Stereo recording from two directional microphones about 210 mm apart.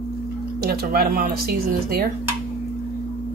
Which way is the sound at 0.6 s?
45° right (ahead or behind).